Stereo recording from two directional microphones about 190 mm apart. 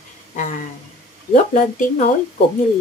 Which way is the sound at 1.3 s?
40° left (ahead or behind).